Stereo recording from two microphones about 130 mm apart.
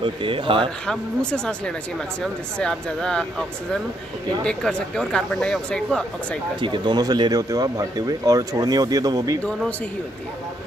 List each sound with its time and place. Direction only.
0.0 s speech: 40° right (ahead or behind)
0.8 s speech: 5° left (ahead or behind)
6.6 s speech: 35° right (ahead or behind)